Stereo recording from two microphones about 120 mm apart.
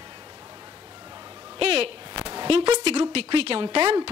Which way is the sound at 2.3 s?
55° right (ahead or behind).